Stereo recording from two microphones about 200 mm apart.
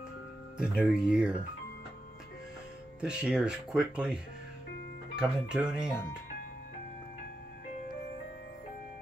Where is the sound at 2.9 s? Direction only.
5° right (ahead or behind).